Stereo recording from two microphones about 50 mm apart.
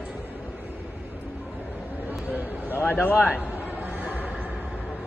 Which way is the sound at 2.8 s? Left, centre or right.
Left.